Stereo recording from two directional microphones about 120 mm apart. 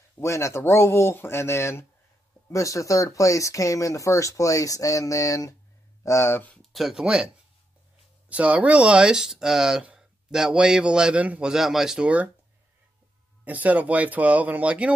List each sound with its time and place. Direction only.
0.2 s speech: 25° left (ahead or behind)
6.6 s speech: centre (ahead or behind)
8.3 s speech: 10° right (ahead or behind)
13.4 s speech: 15° right (ahead or behind)